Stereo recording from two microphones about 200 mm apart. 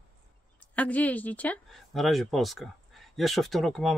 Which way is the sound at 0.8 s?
5° left (ahead or behind).